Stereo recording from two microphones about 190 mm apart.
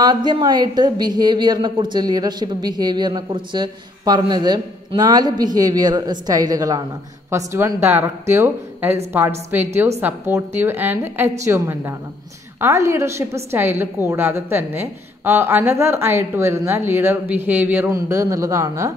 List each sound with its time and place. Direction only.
0.0 s a woman's voice: 25° right (ahead or behind)